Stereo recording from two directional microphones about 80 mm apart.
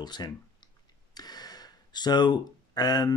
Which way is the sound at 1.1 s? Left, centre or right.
Left.